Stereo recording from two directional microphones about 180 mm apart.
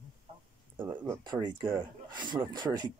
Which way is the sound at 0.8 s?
10° right (ahead or behind).